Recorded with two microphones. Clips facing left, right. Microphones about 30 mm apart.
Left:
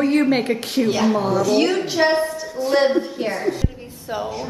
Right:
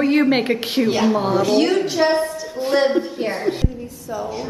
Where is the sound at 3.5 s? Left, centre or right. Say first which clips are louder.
Right 2 dB; right.